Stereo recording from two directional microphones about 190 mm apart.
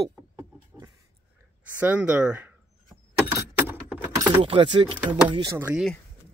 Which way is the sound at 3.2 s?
10° right (ahead or behind).